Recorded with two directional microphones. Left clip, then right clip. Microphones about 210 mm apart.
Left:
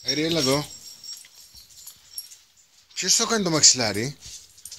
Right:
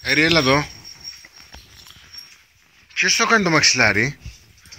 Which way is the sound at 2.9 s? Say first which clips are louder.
Right 7 dB; 15° left (ahead or behind).